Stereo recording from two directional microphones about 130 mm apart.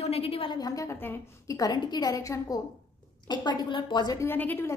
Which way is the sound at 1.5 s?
30° left (ahead or behind).